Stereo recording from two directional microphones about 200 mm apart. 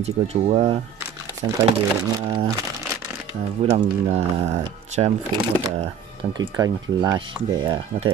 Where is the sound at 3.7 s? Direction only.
30° right (ahead or behind).